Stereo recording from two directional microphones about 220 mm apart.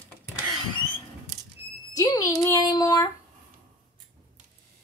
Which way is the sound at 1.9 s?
15° left (ahead or behind).